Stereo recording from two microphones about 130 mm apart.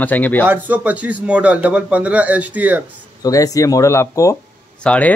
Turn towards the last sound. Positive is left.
turn(degrees=10)  # may be behind; listen again after turning